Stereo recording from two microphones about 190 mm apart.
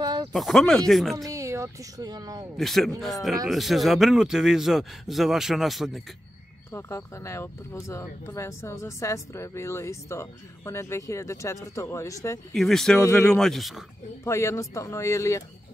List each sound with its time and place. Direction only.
0.0 s a sound: 25° right (ahead or behind)
0.3 s a man's voice: centre (ahead or behind)
1.1 s speech: 15° right (ahead or behind)
2.5 s a man's voice: centre (ahead or behind)
6.7 s speech: 15° left (ahead or behind)
12.5 s a man's voice: centre (ahead or behind)
14.2 s speech: 15° left (ahead or behind)